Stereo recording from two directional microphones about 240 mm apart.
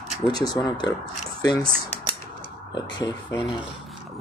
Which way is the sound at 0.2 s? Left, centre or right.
Left.